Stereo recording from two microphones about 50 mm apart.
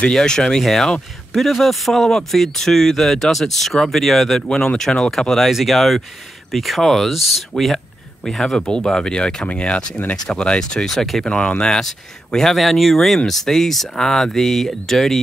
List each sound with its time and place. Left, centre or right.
0.0 s speech: centre
8.5 s speech: centre
11.2 s speech: centre